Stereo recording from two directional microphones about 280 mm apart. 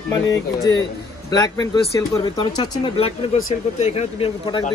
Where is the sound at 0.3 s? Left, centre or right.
Centre.